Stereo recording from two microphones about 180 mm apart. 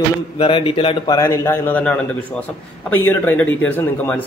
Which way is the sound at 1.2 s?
15° left (ahead or behind).